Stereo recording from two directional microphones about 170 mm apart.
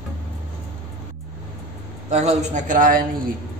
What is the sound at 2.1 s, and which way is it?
Speech, 40° right (ahead or behind).